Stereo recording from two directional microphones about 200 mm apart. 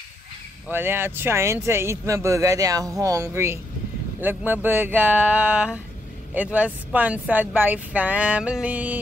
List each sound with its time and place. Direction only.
0.7 s speech: 10° right (ahead or behind)